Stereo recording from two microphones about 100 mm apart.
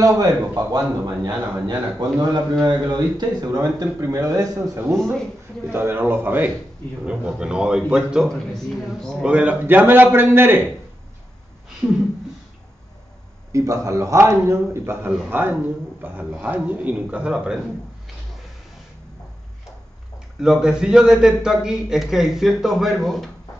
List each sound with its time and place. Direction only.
0.0 s speech: 40° right (ahead or behind)
5.7 s a man's voice: 25° right (ahead or behind)
7.1 s a man's voice: 10° right (ahead or behind)
8.3 s a man's voice: 5° left (ahead or behind)
9.2 s a man's voice: 15° right (ahead or behind)
13.5 s a man's voice: 30° right (ahead or behind); by 17.6 s 5° right (ahead or behind)
20.3 s a man's voice: 5° right (ahead or behind)